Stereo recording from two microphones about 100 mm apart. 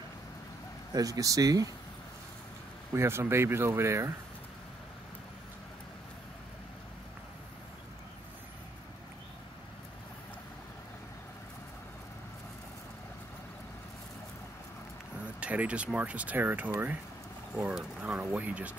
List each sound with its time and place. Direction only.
0.9 s speech: 35° right (ahead or behind)
2.9 s speech: 25° right (ahead or behind)
15.4 s speech: 15° right (ahead or behind)